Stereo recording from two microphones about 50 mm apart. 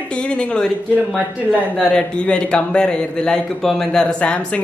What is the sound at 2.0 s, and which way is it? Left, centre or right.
A woman's voice, left.